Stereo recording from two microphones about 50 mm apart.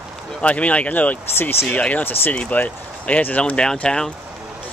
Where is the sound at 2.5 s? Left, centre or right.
Left.